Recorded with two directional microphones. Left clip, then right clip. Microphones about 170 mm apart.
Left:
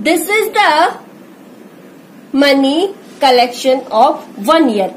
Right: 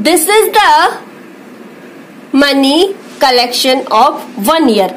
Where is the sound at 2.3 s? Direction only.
65° right (ahead or behind).